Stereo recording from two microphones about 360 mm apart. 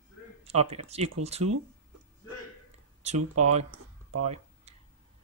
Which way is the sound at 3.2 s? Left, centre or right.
Right.